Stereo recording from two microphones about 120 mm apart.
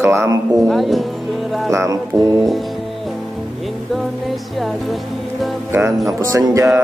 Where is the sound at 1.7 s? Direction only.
25° right (ahead or behind).